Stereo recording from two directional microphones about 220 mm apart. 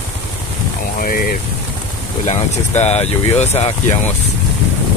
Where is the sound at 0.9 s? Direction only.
40° left (ahead or behind).